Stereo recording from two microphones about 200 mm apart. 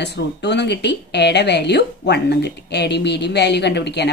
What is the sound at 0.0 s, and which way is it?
A woman's voice, 60° left (ahead or behind).